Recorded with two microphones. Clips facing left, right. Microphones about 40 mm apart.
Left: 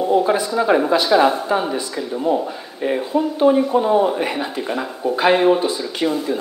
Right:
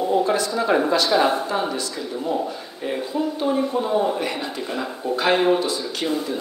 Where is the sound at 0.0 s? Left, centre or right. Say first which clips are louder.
Left 3 dB; centre.